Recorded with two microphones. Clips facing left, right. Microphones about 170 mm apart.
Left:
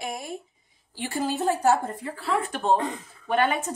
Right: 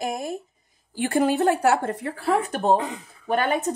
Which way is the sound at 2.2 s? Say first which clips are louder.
Right 4 dB; 45° right (ahead or behind).